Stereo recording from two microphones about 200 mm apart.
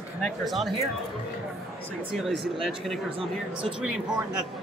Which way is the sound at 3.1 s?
25° right (ahead or behind).